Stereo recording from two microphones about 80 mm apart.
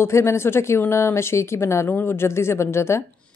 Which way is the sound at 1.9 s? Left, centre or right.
Left.